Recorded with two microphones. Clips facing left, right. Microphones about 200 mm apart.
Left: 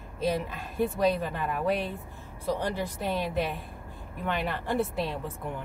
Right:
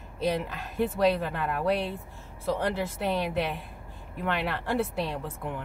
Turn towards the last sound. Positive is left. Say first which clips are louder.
# even
turn(degrees=0)  # may be behind; listen again after turning